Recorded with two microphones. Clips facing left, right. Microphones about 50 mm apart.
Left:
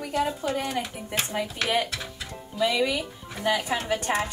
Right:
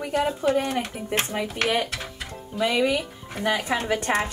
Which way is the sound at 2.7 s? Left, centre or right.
Right.